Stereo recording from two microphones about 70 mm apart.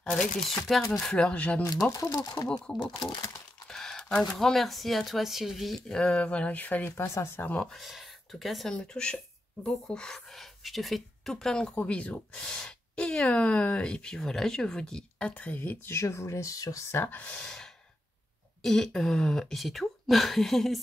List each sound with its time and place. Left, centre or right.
0.0 s speech: centre
1.9 s speech: left
2.4 s speech: centre
3.6 s crumpling: centre
4.2 s speech: centre
5.9 s speech: centre
7.0 s speech: left
7.6 s speech: centre
8.7 s speech: centre
11.7 s speech: left
15.9 s speech: left
16.9 s speech: left
17.4 s gasp: centre
18.6 s speech: centre